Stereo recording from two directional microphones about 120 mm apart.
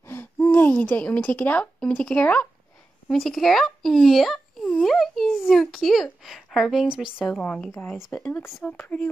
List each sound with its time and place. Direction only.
0.0 s a woman's voice: 20° left (ahead or behind)